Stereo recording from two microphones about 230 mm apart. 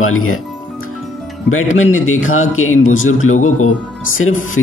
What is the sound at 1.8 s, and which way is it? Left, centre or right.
Speech, left.